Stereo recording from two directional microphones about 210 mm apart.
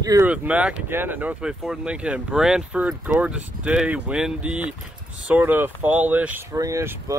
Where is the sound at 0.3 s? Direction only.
5° right (ahead or behind).